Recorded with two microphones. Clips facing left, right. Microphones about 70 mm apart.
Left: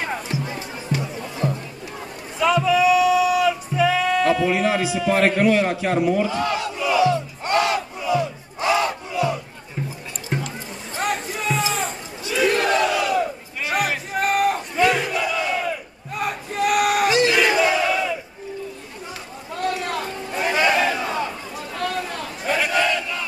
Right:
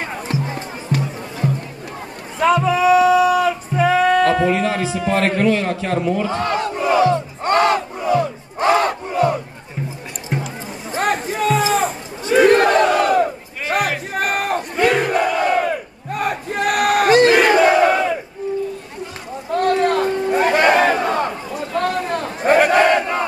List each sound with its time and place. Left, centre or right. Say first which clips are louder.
0.9 s music: right 4 dB; right
2.4 s music: right 2 dB; right
4.5 s a man's voice: right 2 dB; centre
4.8 s a man's voice: even; right
5.1 s a man's voice: even; centre
6.2 s battle cry: right 3 dB; right
10.3 s music: right 2 dB; centre
11.4 s a sound: right 7 dB; centre
12.3 s battle cry: right 7 dB; right
19.7 s chatter: right 10 dB; right
21.7 s crowd: right 6 dB; right